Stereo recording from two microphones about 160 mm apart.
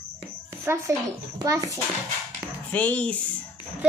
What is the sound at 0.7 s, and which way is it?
A child's voice, 15° right (ahead or behind).